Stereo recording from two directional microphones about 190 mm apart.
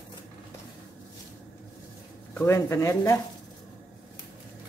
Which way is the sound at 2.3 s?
15° left (ahead or behind).